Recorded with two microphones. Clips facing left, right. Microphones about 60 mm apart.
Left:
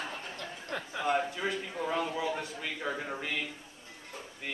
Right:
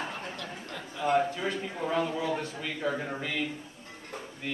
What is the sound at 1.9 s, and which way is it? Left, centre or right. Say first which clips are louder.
A man's voice: right 4 dB; centre.